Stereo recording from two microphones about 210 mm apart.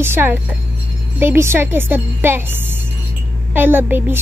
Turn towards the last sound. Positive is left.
turn(degrees=-10)  # may be behind; listen again after turning